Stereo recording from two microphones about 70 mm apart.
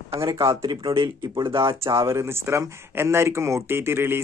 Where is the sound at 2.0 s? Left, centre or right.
Right.